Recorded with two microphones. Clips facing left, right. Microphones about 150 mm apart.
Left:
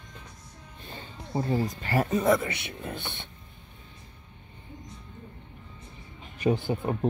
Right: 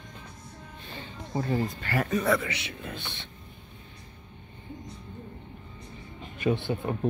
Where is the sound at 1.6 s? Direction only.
40° left (ahead or behind).